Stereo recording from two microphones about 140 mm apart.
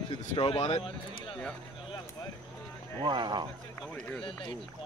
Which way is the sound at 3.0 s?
35° right (ahead or behind).